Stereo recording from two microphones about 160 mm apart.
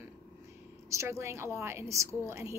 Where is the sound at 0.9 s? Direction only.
15° right (ahead or behind).